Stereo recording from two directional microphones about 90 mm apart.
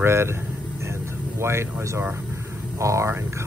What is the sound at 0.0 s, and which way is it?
Speech, 30° right (ahead or behind).